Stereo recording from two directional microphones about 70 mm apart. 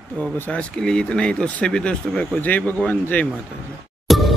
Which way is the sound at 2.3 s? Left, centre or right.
Left.